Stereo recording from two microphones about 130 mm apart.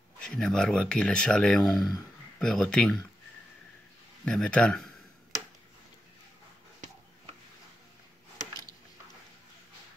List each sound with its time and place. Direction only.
0.2 s speech: 5° left (ahead or behind)
4.2 s a man's voice: 10° left (ahead or behind)